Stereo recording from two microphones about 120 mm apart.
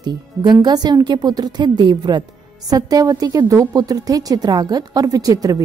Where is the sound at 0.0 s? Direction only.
35° right (ahead or behind).